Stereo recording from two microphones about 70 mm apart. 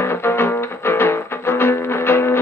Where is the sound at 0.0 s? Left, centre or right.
Left.